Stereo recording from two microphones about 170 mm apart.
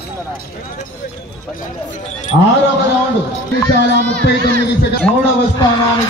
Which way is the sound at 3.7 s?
75° right (ahead or behind).